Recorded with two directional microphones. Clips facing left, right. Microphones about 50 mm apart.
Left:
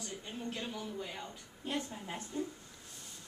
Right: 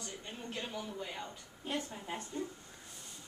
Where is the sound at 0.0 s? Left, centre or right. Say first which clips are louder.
Left 3 dB; centre.